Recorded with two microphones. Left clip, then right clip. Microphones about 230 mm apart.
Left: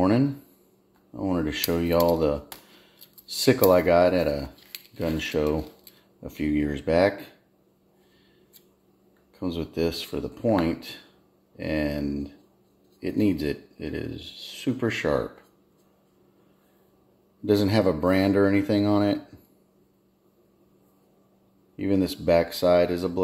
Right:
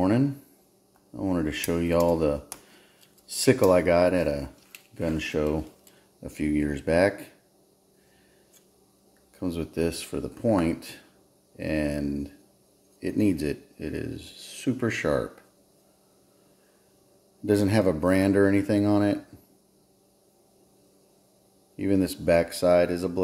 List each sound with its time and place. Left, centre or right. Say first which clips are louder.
1.1 s speech: left 1 dB; centre
9.4 s speech: left 1 dB; centre
17.5 s speech: left 1 dB; centre
21.7 s speech: even; centre